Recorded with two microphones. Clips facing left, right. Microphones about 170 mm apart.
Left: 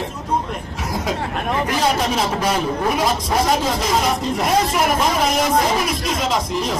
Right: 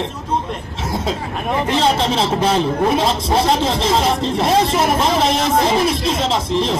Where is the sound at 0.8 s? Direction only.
25° right (ahead or behind).